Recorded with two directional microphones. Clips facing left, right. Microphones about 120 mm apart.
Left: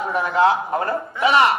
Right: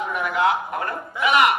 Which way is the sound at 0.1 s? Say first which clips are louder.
Left 5 dB; 30° left (ahead or behind).